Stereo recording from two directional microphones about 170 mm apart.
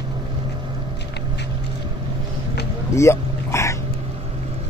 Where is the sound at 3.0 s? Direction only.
15° left (ahead or behind).